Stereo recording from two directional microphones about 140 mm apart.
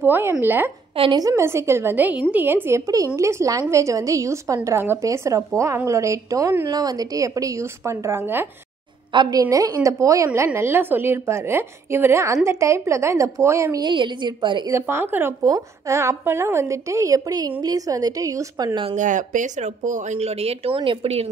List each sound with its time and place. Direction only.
0.0 s a woman's voice: 15° right (ahead or behind)
0.9 s a woman's voice: 40° right (ahead or behind)
1.2 s a woman's voice: 20° right (ahead or behind)
9.1 s a woman's voice: 30° right (ahead or behind)
13.8 s a woman's voice: 35° right (ahead or behind)
14.7 s a woman's voice: 15° right (ahead or behind)
18.9 s speech: 60° right (ahead or behind); by 21.3 s 45° right (ahead or behind)